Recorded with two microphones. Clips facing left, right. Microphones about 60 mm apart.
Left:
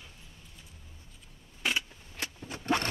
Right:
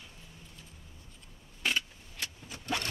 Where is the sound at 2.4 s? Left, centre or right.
Left.